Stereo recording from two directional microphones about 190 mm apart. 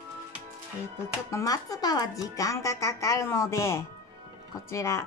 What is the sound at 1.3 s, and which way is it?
A woman's voice, 15° left (ahead or behind).